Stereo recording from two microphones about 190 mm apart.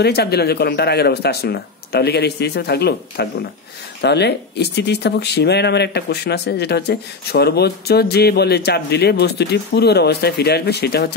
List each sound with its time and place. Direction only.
0.0 s speech: 60° left (ahead or behind)